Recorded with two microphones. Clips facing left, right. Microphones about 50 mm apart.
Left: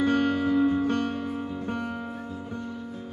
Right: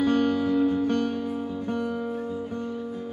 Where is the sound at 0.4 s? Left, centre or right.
Centre.